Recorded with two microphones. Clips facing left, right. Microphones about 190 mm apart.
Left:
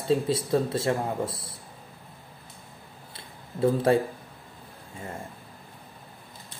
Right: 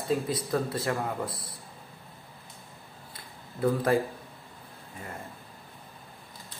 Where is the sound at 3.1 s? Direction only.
25° left (ahead or behind).